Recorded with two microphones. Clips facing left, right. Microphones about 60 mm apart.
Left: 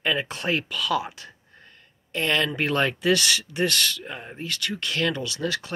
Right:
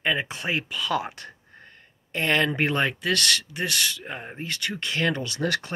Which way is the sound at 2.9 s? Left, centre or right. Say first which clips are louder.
Left 3 dB; centre.